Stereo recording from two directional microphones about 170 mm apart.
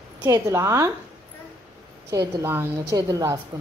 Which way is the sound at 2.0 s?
15° right (ahead or behind).